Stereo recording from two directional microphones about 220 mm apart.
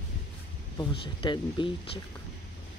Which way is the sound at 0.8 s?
20° left (ahead or behind).